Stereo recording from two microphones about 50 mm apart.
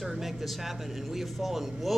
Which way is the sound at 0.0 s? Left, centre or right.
Centre.